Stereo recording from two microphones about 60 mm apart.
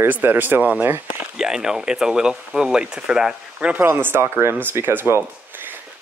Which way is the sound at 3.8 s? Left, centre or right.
Right.